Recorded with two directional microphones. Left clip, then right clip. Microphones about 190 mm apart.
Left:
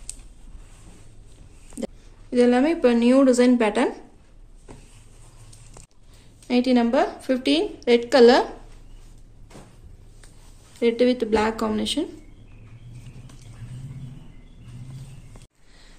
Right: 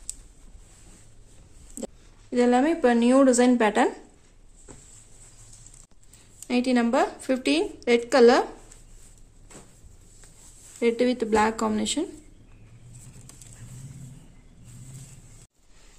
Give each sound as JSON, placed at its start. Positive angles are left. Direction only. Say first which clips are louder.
{"t": 2.3, "sound": "a woman's voice", "louder": "left 3 dB", "side_deg": -45}
{"t": 6.4, "sound": "a woman's voice", "louder": "left 3 dB", "side_deg": -50}
{"t": 10.8, "sound": "a woman's voice", "louder": "left 3 dB", "side_deg": -50}